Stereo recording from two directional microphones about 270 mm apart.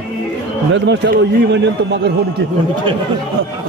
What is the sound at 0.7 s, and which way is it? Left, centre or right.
A man's voice, right.